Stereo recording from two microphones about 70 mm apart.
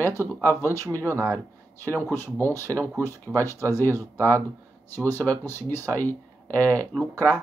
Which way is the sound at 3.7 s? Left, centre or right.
Left.